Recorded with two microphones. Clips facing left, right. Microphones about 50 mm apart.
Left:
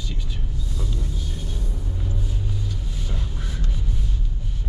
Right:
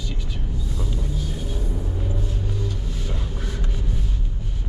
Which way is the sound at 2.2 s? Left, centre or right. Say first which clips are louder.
Right 2 dB; centre.